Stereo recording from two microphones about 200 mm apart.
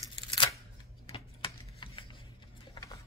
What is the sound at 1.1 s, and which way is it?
Typing, 25° left (ahead or behind).